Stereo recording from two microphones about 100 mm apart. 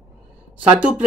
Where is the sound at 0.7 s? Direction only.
10° right (ahead or behind).